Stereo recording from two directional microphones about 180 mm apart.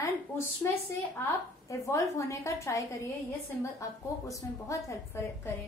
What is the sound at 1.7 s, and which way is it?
A woman's voice, 15° left (ahead or behind).